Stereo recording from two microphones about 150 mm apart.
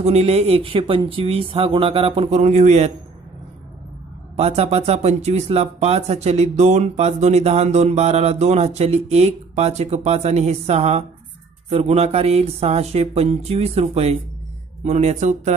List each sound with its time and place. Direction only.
0.0 s speech: 45° right (ahead or behind)
4.4 s speech: 45° right (ahead or behind)